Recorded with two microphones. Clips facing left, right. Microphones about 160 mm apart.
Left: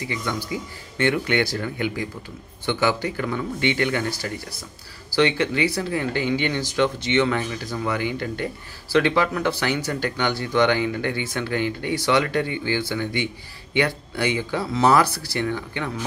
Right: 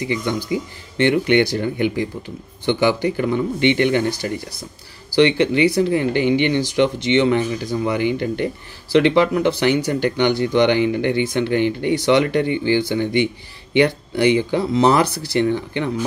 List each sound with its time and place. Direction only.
0.1 s speech: 20° right (ahead or behind)